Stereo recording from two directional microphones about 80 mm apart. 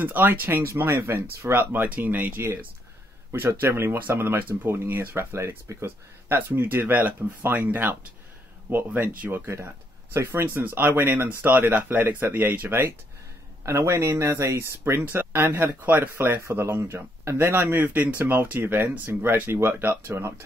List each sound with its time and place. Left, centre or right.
0.0 s speech: right